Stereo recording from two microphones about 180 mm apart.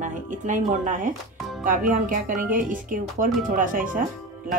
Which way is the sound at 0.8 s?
45° right (ahead or behind).